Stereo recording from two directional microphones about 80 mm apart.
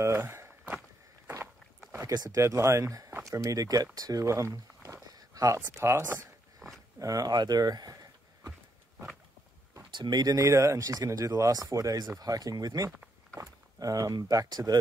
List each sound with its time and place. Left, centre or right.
0.0 s walk: right
1.9 s a sound: right
2.1 s speech: right
2.4 s speech: right
5.8 s speech: right
6.6 s a sound: centre
7.0 s speech: right
9.9 s speech: right